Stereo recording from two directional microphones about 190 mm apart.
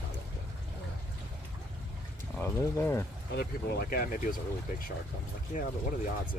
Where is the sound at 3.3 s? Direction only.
55° left (ahead or behind).